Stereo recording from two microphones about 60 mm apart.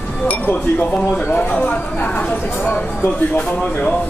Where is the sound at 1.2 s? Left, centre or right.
Left.